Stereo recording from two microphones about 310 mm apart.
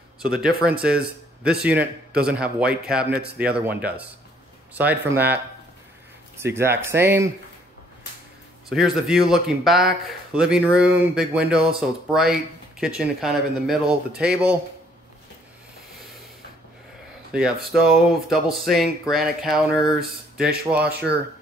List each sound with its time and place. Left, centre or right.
0.2 s speech: centre
8.6 s speech: centre
17.3 s speech: centre
20.0 s speech: right